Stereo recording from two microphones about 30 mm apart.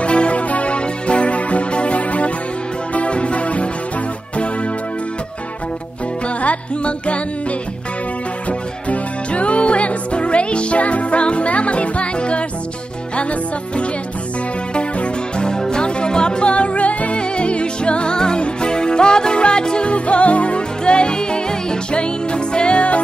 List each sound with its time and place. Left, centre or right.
0.0 s music: left
6.2 s music: left
8.5 s music: left
17.2 s music: left
19.9 s music: left